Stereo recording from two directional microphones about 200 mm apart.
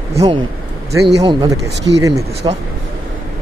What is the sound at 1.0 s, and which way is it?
Speech, 20° right (ahead or behind).